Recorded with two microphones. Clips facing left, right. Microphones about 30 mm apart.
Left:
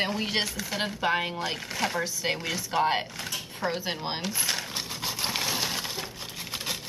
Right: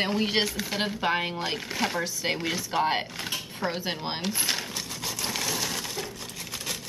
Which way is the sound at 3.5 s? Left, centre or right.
Centre.